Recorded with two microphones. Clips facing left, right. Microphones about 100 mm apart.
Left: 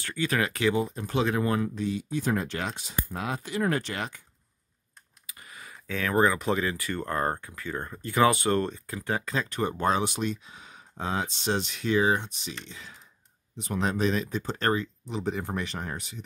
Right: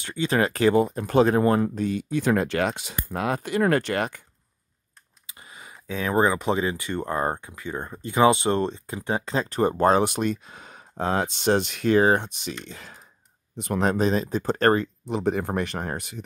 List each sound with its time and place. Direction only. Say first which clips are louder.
0.0 s speech: right 4 dB; 20° right (ahead or behind)
0.4 s speech: right 8 dB; 40° right (ahead or behind); by 4.2 s 60° right (ahead or behind)
5.2 s speech: right 1 dB; 20° right (ahead or behind); by 12.5 s 60° right (ahead or behind)
12.6 s speech: right 4 dB; 50° right (ahead or behind)
13.9 s speech: right 4 dB; 35° right (ahead or behind); by 16.2 s 55° right (ahead or behind)